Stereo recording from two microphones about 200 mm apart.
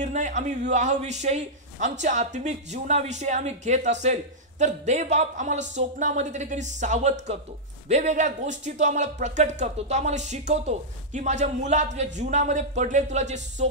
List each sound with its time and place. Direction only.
0.0 s a man's voice: 40° right (ahead or behind)